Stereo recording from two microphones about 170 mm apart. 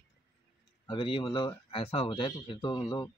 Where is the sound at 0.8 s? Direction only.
30° left (ahead or behind).